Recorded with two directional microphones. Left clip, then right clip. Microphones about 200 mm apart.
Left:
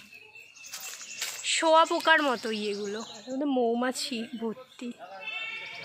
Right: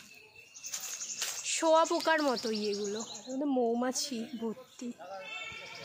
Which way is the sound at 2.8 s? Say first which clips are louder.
Left 2 dB; 15° left (ahead or behind).